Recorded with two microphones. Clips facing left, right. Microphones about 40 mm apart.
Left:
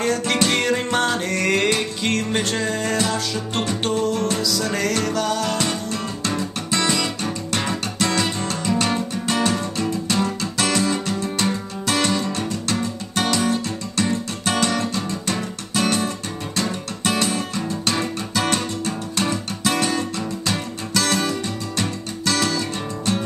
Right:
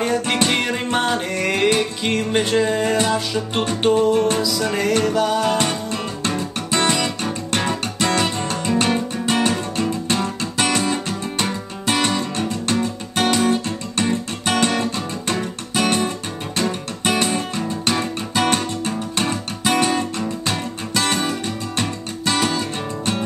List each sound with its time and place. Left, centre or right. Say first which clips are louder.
0.0 s music: right 1 dB; centre
5.6 s music: right 2 dB; right
6.7 s guitar: right 3 dB; right
7.5 s music: right 2 dB; right